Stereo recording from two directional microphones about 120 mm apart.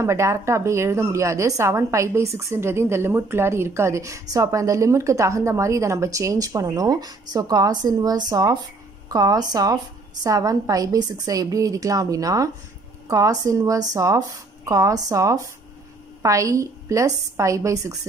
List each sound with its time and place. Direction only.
0.0 s a woman's voice: 25° right (ahead or behind)